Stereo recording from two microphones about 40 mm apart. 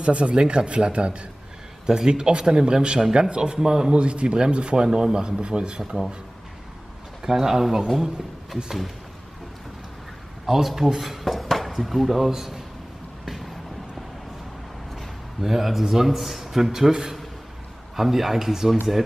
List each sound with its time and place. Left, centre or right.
0.0 s a man's voice: right
3.9 s speech: right
7.2 s a man's voice: centre
10.4 s a man's voice: centre
13.2 s vehicle: centre
15.4 s a man's voice: centre